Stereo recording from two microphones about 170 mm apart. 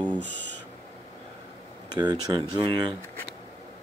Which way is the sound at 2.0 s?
25° right (ahead or behind).